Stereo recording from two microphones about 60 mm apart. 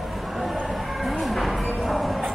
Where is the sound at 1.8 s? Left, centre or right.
Centre.